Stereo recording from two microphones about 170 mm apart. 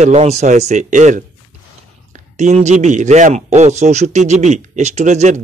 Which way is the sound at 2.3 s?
45° right (ahead or behind).